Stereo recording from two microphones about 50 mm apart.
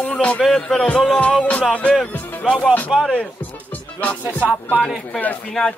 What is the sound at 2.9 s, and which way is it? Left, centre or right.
Speech, centre.